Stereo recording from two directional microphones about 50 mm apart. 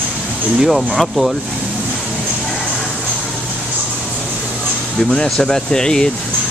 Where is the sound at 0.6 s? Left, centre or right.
Centre.